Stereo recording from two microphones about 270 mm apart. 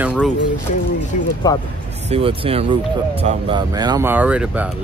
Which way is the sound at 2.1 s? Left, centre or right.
Centre.